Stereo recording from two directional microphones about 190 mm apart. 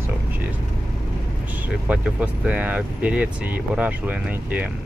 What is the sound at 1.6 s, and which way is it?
Speech, 10° right (ahead or behind).